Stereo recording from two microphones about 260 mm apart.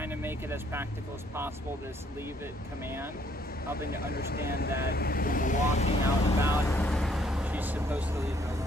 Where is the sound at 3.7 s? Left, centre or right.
Left.